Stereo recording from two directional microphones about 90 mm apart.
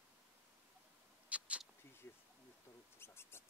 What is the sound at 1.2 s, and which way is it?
Mouse, 15° right (ahead or behind).